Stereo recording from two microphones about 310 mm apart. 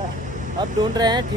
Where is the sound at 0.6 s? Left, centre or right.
Centre.